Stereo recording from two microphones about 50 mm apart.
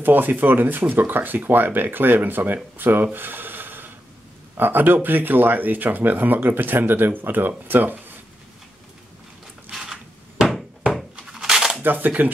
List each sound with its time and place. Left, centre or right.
0.0 s speech: right
9.7 s wood: centre
11.1 s a sound: centre
11.8 s speech: right